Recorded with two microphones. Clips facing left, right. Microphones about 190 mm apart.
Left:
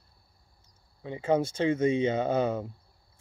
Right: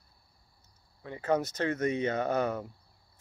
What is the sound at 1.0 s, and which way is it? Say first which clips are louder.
Speech: left 3 dB; 25° left (ahead or behind).